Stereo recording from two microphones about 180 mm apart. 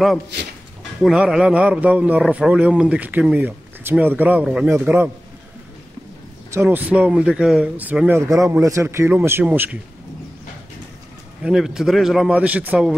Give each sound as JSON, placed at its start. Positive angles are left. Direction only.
{"t": 0.3, "sound": "speech", "side_deg": -70}
{"t": 1.0, "sound": "speech", "side_deg": -5}
{"t": 6.5, "sound": "speech", "side_deg": -10}
{"t": 11.4, "sound": "speech", "side_deg": -5}